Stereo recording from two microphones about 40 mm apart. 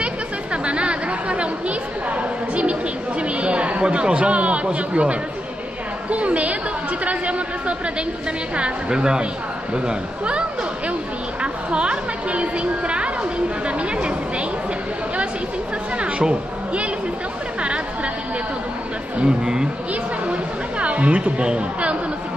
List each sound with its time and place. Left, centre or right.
0.0 s a woman's voice: right
11.4 s a woman's voice: right
16.0 s a woman's voice: right
17.6 s chatter: right
19.2 s a woman's voice: right
20.8 s a woman's voice: right